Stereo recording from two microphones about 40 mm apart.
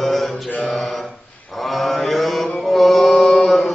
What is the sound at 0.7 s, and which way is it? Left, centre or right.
Mantra, centre.